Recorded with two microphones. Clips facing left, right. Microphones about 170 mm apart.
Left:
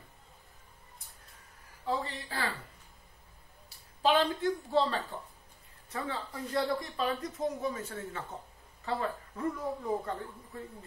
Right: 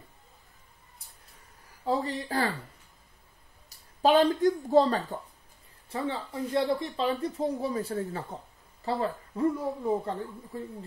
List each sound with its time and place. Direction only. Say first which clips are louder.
1.9 s speech: right 6 dB; 40° right (ahead or behind)
3.6 s speech: right 5 dB; 40° right (ahead or behind)
5.9 s speech: right 5 dB; 25° right (ahead or behind)